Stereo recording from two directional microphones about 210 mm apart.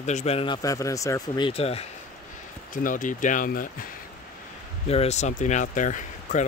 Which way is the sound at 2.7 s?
40° left (ahead or behind).